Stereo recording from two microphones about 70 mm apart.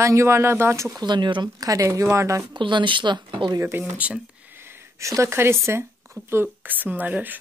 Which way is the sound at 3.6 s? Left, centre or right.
Right.